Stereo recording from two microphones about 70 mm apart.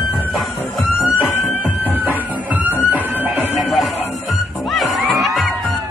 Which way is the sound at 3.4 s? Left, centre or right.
Right.